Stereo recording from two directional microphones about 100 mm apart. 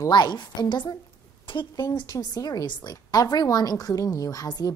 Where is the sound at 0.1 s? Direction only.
45° left (ahead or behind).